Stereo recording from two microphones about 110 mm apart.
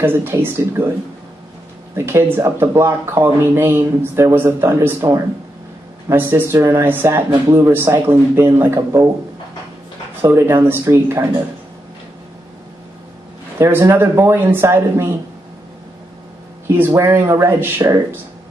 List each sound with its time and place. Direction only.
0.0 s speech: 20° right (ahead or behind)
2.0 s speech: 20° right (ahead or behind)
10.2 s speech: 20° right (ahead or behind)
13.6 s speech: 25° right (ahead or behind)
16.6 s speech: 20° right (ahead or behind)